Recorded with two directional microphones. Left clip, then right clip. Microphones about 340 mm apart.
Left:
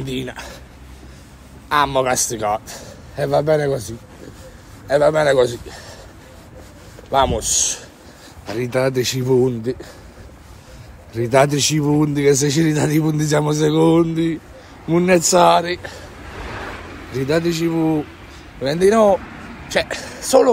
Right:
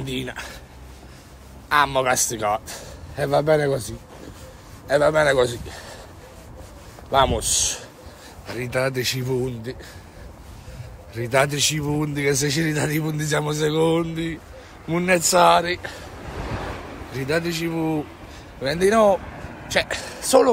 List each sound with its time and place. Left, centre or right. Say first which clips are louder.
0.0 s a man's voice: left 2 dB; centre
1.7 s a man's voice: left 2 dB; centre
7.1 s a man's voice: left 2 dB; centre
8.5 s speech: left 5 dB; centre
11.1 s a man's voice: left 5 dB; centre
16.3 s waves: left 1 dB; right
17.1 s a man's voice: left 5 dB; centre